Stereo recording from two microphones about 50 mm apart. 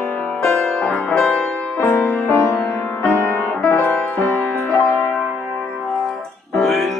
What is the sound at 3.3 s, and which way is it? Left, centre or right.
Music, left.